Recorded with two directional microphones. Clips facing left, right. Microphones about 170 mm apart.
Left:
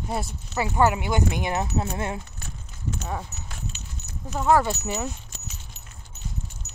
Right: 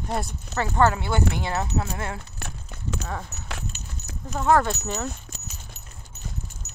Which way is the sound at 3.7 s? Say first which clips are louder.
Right 1 dB; 45° right (ahead or behind).